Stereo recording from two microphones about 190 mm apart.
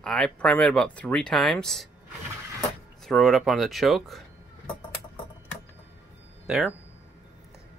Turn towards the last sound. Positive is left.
turn(degrees=-5)  # may be behind; listen again after turning